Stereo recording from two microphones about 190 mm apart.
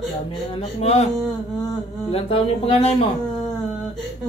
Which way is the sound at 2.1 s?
30° left (ahead or behind).